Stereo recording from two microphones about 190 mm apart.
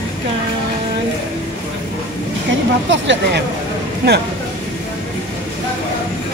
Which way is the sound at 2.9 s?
75° right (ahead or behind).